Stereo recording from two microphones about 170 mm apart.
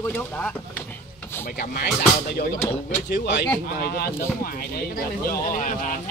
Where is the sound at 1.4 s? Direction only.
60° left (ahead or behind).